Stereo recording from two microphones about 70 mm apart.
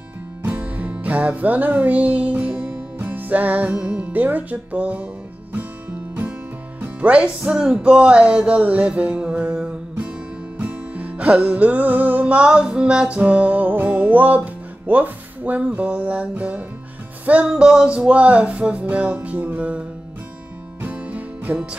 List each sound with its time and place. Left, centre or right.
0.4 s music: right
6.8 s music: centre
17.5 s music: centre
20.8 s music: right